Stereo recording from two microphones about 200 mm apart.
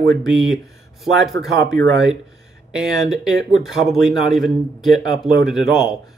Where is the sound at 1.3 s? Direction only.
65° right (ahead or behind).